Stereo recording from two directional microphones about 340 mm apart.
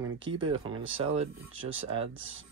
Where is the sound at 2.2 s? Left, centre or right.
Right.